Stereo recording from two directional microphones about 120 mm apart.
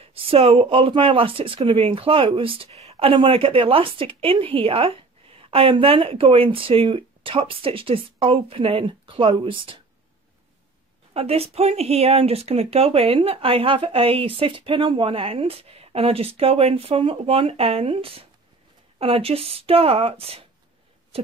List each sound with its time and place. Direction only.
0.0 s speech: 50° right (ahead or behind)
11.1 s speech: 55° right (ahead or behind)
21.1 s a sound: 55° right (ahead or behind)